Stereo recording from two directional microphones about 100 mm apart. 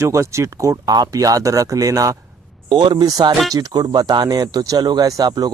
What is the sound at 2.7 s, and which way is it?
Speech, 55° right (ahead or behind).